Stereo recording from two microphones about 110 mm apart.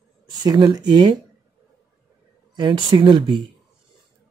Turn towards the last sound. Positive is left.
turn(degrees=-45)  # may be behind; listen again after turning